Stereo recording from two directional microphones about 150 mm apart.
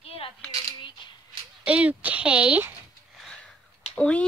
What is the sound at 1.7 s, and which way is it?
Speech, 10° right (ahead or behind).